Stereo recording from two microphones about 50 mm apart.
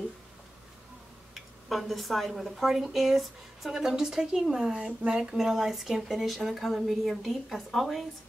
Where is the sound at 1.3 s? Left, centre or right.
Centre.